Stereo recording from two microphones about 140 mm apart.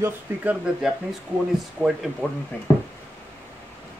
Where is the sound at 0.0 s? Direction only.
10° right (ahead or behind).